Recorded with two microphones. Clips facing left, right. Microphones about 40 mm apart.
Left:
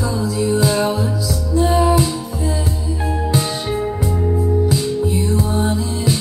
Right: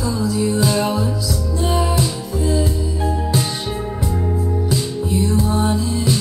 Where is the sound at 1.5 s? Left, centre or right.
Left.